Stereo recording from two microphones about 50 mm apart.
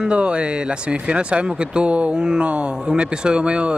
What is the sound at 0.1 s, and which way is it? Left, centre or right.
Speech, right.